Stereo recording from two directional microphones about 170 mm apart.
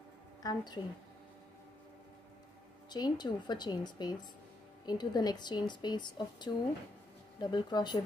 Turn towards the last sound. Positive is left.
turn(degrees=25)  # may be behind; listen again after turning